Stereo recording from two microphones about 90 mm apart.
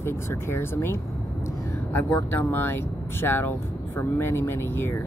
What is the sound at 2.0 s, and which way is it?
Speech, 25° left (ahead or behind).